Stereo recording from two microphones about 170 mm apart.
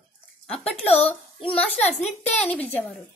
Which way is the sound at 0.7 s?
35° left (ahead or behind).